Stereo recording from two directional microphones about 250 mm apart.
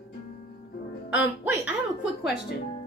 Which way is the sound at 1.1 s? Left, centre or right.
Centre.